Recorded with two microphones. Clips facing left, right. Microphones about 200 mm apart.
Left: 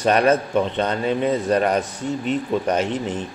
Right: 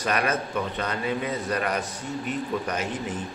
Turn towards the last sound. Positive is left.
turn(degrees=30)  # may be behind; listen again after turning